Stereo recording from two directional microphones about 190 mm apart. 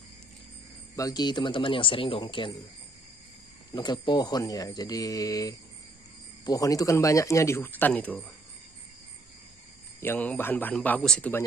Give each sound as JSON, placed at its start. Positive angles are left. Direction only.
{"t": 0.9, "sound": "speech", "side_deg": 20}
{"t": 3.7, "sound": "speech", "side_deg": 25}
{"t": 9.9, "sound": "speech", "side_deg": 10}